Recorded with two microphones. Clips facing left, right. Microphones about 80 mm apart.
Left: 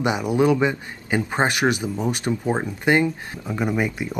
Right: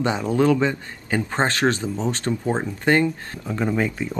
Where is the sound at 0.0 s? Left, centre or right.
Centre.